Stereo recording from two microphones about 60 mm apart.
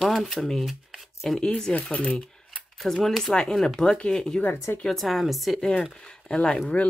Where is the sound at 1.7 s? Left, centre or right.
Centre.